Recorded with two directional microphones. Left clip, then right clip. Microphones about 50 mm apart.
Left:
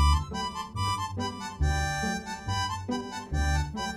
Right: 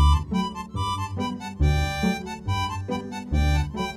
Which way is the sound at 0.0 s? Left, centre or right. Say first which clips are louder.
Right 3 dB; right.